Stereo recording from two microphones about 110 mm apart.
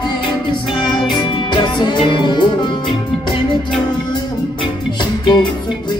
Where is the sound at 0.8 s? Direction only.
45° left (ahead or behind).